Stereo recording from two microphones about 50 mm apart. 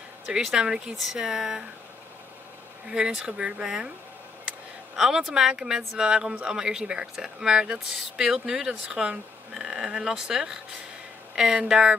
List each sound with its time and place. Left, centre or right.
0.3 s speech: centre
2.9 s speech: centre
4.9 s speech: centre